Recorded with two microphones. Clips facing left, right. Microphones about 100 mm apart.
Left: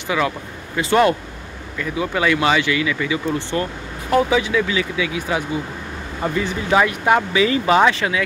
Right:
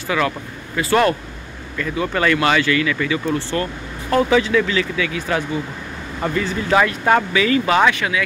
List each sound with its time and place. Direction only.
0.1 s speech: 15° left (ahead or behind)
1.8 s speech: 10° left (ahead or behind)
7.3 s speech: 25° left (ahead or behind)